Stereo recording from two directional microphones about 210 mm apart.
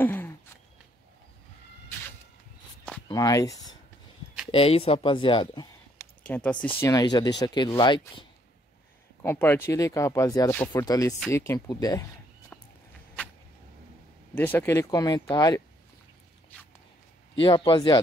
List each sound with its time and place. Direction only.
0.0 s a sound: 10° left (ahead or behind)
3.1 s speech: 15° left (ahead or behind)
4.5 s speech: 25° left (ahead or behind)
6.2 s speech: 5° left (ahead or behind)
9.2 s speech: 10° left (ahead or behind)
14.3 s speech: 10° left (ahead or behind)
17.4 s speech: 20° left (ahead or behind)